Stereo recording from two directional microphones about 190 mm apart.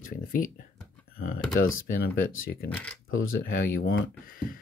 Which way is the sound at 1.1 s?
50° left (ahead or behind).